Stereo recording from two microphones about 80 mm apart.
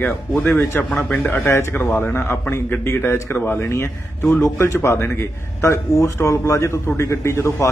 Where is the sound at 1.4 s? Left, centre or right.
Left.